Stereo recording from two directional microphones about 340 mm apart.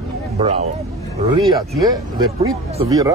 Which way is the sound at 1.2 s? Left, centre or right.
Centre.